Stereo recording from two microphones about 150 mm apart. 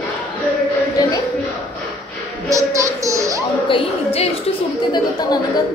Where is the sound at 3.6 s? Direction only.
35° left (ahead or behind).